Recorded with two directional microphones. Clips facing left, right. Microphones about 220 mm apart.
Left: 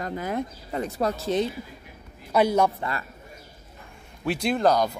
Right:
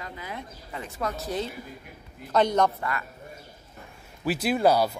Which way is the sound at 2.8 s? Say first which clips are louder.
Left 1 dB; 30° left (ahead or behind).